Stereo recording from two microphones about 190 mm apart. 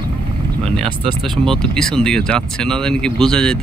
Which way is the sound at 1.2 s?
Centre (ahead or behind).